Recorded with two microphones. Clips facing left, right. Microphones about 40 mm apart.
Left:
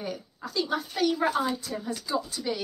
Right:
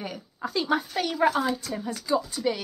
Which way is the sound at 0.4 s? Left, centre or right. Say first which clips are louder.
Right 9 dB; right.